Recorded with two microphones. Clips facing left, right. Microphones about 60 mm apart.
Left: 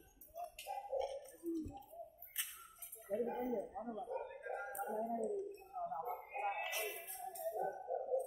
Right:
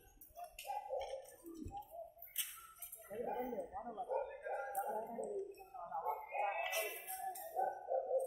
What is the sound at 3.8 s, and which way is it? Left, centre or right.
Bow-wow, right.